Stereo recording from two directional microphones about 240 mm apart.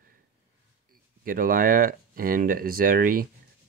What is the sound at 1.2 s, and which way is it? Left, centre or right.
Speech, right.